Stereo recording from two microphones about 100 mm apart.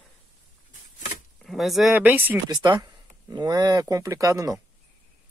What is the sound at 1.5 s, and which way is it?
Speech, centre (ahead or behind).